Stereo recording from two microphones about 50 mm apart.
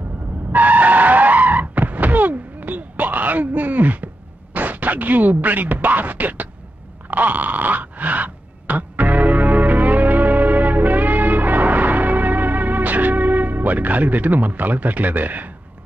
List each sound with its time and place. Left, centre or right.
0.5 s skidding: right
4.6 s speech: right
7.1 s a sound: right